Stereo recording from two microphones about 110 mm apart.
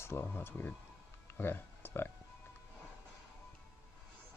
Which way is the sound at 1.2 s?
20° left (ahead or behind).